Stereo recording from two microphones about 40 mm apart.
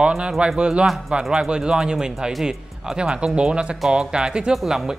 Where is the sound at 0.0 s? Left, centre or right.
Right.